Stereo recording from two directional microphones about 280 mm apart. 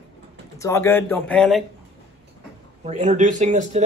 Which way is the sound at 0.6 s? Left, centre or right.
Centre.